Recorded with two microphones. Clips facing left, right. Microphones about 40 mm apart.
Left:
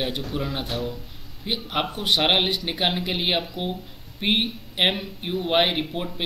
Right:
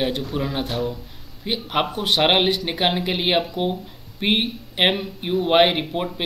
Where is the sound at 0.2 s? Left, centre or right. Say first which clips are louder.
Right 3 dB; centre.